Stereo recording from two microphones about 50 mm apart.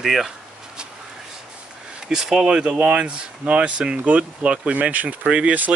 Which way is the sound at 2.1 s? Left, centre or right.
Centre.